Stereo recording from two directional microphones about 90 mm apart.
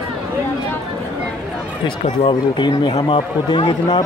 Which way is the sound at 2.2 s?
60° left (ahead or behind).